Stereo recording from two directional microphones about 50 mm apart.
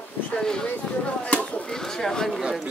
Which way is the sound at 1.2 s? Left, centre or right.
Left.